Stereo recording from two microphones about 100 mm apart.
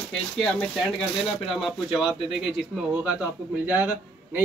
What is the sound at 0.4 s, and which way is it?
Speech, 10° left (ahead or behind).